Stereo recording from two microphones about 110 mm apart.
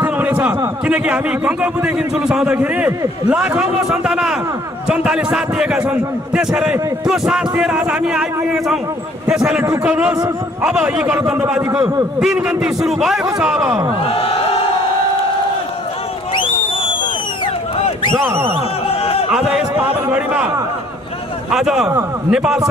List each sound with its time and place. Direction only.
0.0 s a sound: 15° right (ahead or behind)
0.8 s a man's voice: 10° right (ahead or behind)
9.3 s a man's voice: 10° right (ahead or behind)
14.0 s crowd: 60° left (ahead or behind)
18.1 s speech: 20° right (ahead or behind)
18.9 s a sound: 65° left (ahead or behind)
19.3 s a man's voice: 5° right (ahead or behind)
21.5 s a man's voice: 5° right (ahead or behind)